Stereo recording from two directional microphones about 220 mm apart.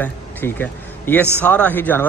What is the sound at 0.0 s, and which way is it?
A man's voice, 10° left (ahead or behind).